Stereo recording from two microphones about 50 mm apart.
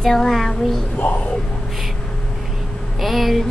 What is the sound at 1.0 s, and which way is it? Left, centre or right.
Speech, left.